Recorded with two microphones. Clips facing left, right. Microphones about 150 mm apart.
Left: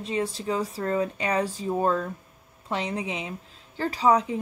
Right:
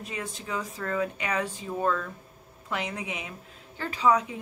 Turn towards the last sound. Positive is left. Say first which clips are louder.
# left 2 dB
turn(degrees=35)  # may be behind; listen again after turning